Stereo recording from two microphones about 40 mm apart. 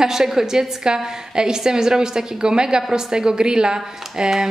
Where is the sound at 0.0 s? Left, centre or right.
Centre.